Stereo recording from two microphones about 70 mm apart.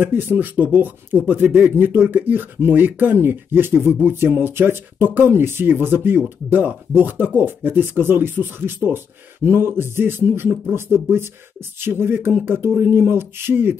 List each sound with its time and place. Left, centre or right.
0.0 s speech: right